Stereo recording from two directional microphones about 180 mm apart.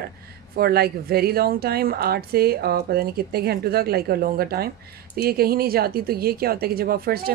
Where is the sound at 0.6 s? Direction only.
60° right (ahead or behind).